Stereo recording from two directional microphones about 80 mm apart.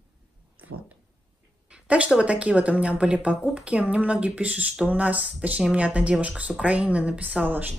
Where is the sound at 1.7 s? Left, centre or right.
Centre.